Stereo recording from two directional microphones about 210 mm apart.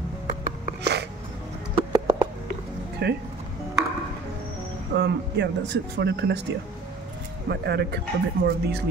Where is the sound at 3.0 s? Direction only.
50° right (ahead or behind).